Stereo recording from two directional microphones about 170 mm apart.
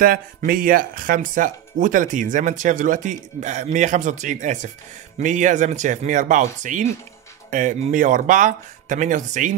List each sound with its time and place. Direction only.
0.0 s speech: 55° right (ahead or behind)